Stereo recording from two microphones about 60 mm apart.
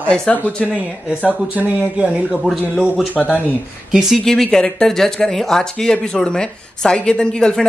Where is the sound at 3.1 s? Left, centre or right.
Left.